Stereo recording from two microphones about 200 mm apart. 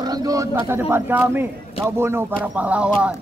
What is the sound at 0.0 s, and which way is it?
A man's voice, 20° right (ahead or behind).